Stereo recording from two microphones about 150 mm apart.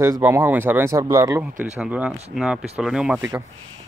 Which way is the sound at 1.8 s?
10° right (ahead or behind).